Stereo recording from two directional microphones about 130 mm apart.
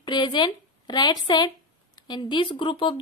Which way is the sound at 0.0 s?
35° left (ahead or behind).